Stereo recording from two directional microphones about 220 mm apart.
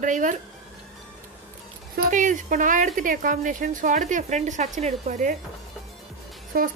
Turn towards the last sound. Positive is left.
turn(degrees=-40)  # may be behind; listen again after turning